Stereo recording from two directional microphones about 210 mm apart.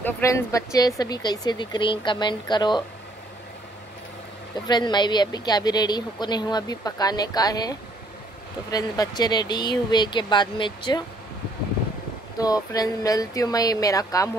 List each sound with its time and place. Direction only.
0.0 s a woman's voice: 10° left (ahead or behind)
4.6 s a woman's voice: 20° left (ahead or behind)
12.4 s speech: 20° left (ahead or behind)